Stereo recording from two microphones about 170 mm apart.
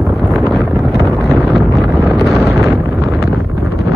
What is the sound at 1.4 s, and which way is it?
Wind noise, centre (ahead or behind).